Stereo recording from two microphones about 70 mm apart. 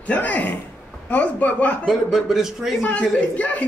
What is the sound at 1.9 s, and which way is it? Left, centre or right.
Speech, centre.